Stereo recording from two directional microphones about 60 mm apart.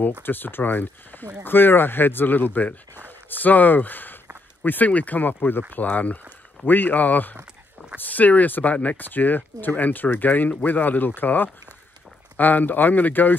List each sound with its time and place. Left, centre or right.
0.2 s speech: left